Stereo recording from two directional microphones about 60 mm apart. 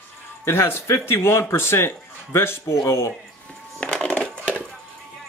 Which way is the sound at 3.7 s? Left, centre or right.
Left.